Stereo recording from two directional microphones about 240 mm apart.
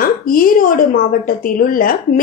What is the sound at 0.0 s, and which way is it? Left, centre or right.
A woman's voice, left.